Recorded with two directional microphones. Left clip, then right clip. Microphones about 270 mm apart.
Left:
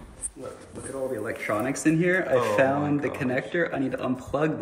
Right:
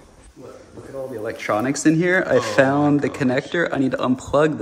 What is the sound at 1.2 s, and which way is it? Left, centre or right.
Speech, right.